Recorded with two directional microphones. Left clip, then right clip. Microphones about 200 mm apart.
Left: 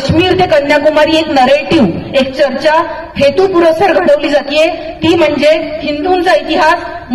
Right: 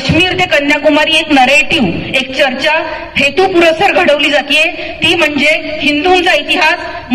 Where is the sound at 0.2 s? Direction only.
35° left (ahead or behind).